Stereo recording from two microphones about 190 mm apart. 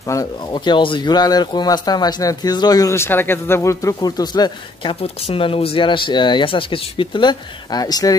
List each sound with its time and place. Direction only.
0.0 s speech: 15° left (ahead or behind)